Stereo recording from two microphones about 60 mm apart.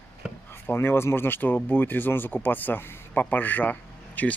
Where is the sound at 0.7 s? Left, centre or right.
Left.